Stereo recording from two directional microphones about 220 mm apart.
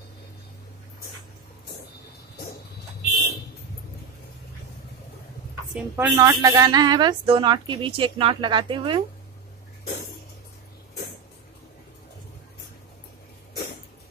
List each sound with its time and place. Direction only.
5.8 s a woman's voice: 10° right (ahead or behind)